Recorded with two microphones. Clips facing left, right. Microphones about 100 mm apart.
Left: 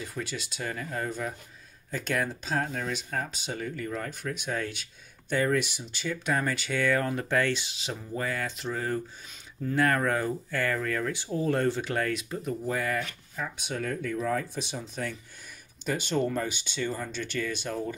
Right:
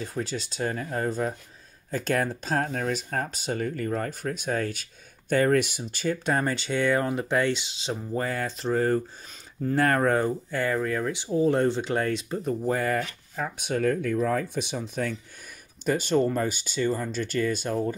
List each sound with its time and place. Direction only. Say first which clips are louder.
0.0 s speech: right 5 dB; 35° right (ahead or behind)
10.5 s speech: right 1 dB; 20° right (ahead or behind); by 15.1 s 55° right (ahead or behind)
15.8 s speech: right 5 dB; 45° right (ahead or behind)